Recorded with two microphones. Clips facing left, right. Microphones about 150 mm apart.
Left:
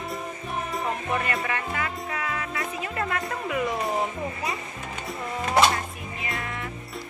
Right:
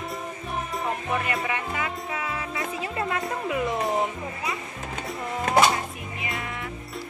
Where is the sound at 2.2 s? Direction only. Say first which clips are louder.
Left 1 dB; 25° right (ahead or behind).